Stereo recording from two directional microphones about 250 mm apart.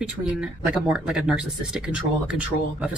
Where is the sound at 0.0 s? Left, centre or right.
Centre.